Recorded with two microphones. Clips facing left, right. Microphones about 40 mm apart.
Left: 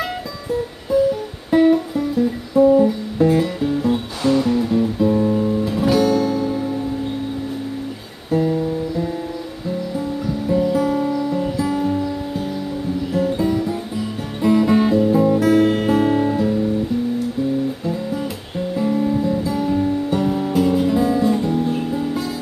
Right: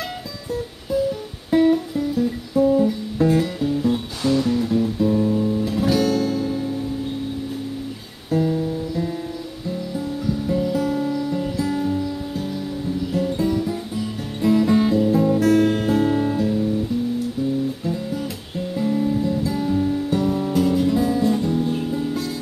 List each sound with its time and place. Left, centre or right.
1.5 s music: centre
8.3 s music: centre
18.8 s guitar: centre